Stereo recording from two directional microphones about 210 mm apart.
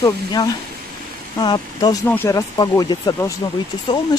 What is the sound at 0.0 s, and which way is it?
Speech, 15° left (ahead or behind).